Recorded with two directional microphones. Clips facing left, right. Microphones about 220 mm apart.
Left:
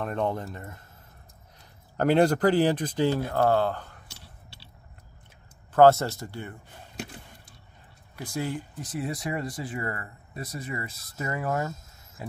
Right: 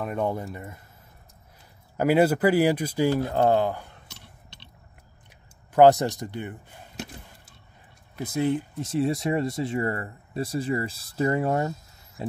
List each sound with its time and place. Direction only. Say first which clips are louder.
0.0 s speech: right 1 dB; 10° right (ahead or behind)
2.0 s speech: right 1 dB; 5° right (ahead or behind)
5.7 s speech: right 1 dB; 15° right (ahead or behind)
8.2 s speech: right 7 dB; 20° right (ahead or behind)
12.2 s a sound: right 7 dB; 25° right (ahead or behind)